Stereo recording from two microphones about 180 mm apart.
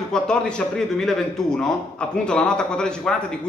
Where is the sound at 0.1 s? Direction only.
5° left (ahead or behind).